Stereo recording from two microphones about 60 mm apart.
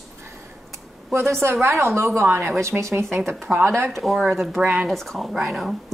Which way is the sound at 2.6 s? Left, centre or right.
Right.